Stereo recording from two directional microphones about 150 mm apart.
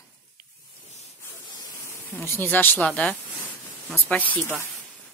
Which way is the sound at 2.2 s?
15° left (ahead or behind).